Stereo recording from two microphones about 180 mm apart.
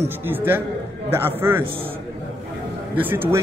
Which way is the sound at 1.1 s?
15° right (ahead or behind).